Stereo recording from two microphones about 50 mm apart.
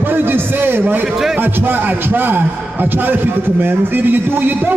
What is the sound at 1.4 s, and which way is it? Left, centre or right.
A man's voice, right.